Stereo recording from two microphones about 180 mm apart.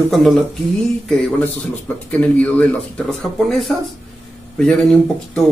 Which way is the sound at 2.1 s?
5° left (ahead or behind).